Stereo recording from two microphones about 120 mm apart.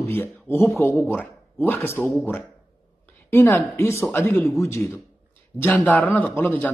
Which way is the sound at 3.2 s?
20° left (ahead or behind).